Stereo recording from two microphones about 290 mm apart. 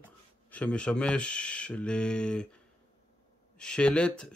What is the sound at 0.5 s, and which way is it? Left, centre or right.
Speech, centre.